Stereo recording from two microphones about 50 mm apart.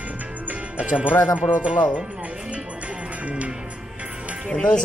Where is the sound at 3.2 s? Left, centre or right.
Right.